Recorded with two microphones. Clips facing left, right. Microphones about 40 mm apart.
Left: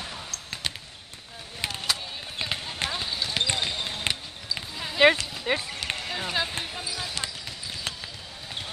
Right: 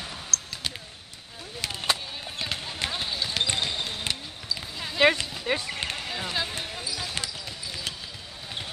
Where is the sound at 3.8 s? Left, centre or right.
Centre.